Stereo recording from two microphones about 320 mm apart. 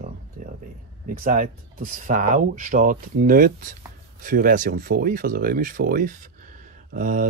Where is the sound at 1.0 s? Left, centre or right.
Right.